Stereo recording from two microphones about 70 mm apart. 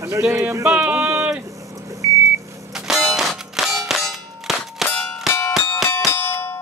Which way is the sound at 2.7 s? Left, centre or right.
Centre.